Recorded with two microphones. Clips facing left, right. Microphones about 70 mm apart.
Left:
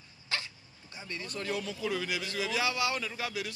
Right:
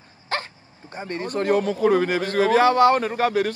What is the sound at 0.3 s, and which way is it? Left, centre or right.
Dog, right.